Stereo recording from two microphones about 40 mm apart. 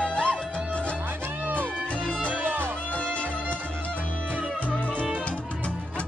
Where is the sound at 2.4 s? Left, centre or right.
Right.